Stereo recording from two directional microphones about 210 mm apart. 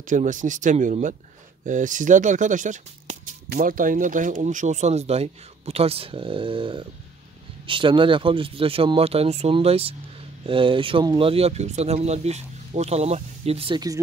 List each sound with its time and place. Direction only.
0.0 s speech: 35° right (ahead or behind); by 13.9 s 20° right (ahead or behind)